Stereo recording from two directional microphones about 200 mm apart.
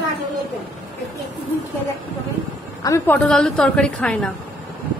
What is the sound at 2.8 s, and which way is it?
A woman's voice, 10° left (ahead or behind).